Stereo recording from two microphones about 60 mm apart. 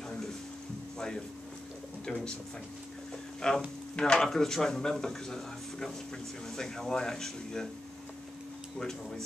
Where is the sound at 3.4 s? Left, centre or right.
Centre.